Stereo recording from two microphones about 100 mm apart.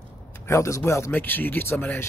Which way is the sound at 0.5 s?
30° left (ahead or behind).